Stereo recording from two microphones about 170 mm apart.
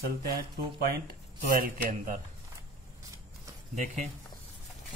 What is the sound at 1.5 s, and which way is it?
Speech, 55° right (ahead or behind).